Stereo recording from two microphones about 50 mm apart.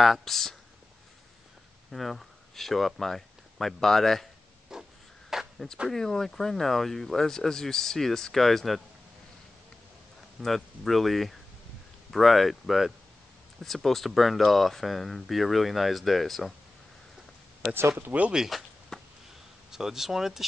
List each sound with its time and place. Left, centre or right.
0.0 s speech: centre
1.9 s speech: centre
4.7 s a sound: centre
5.9 s speech: centre
10.4 s speech: centre
17.7 s speech: right
18.5 s speech: centre
18.9 s a sound: centre
19.7 s speech: centre